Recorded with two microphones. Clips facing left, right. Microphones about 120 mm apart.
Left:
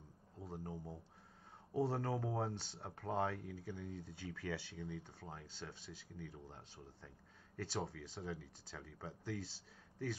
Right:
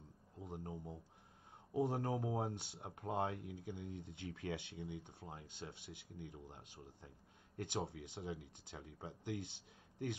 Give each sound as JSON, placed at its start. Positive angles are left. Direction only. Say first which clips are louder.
{"t": 0.4, "sound": "a sound", "louder": "even", "side_deg": -15}
{"t": 0.7, "sound": "speech", "louder": "even", "side_deg": 5}
{"t": 1.7, "sound": "a man's voice", "louder": "even", "side_deg": -15}